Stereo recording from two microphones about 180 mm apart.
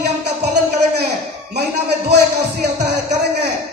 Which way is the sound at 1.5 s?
65° right (ahead or behind).